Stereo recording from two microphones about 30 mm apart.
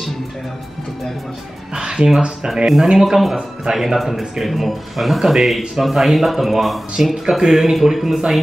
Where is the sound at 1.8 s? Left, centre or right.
Right.